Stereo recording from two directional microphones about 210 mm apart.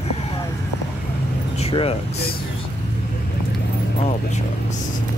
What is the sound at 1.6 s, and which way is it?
Air conditioning, 25° left (ahead or behind).